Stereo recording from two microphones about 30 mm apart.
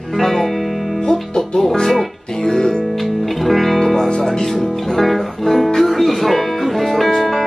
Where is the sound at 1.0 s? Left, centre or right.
Left.